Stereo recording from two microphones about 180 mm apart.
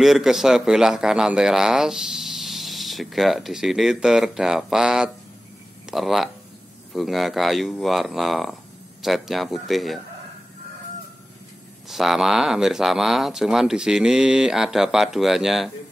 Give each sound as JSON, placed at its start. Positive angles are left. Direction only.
{"t": 0.0, "sound": "a man's voice", "side_deg": 0}
{"t": 11.9, "sound": "a man's voice", "side_deg": 0}